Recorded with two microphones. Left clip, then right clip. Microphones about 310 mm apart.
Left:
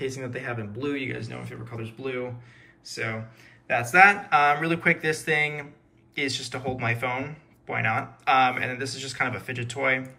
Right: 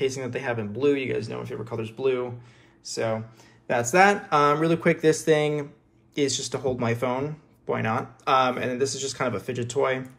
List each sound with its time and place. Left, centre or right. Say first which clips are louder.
0.0 s speech: right 5 dB; centre